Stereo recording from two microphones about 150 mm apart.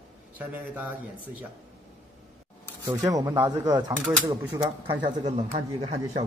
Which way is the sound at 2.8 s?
25° right (ahead or behind).